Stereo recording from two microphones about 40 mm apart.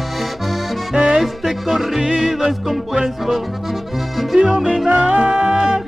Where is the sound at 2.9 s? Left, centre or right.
Centre.